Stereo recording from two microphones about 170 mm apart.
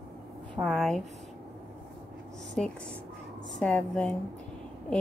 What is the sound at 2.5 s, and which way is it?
A woman's voice, 5° left (ahead or behind).